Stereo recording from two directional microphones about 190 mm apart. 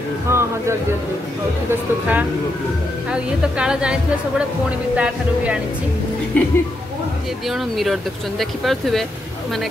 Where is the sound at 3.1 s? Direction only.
5° right (ahead or behind).